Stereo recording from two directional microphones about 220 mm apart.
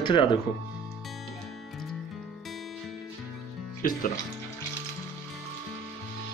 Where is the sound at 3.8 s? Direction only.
40° left (ahead or behind).